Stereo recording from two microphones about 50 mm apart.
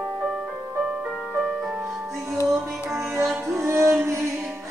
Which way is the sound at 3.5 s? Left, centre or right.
Right.